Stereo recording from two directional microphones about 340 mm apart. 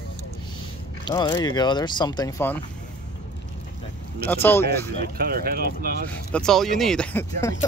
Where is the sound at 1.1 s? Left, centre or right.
Centre.